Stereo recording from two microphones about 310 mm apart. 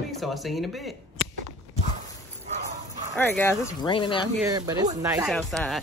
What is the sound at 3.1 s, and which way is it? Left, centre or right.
Speech, centre.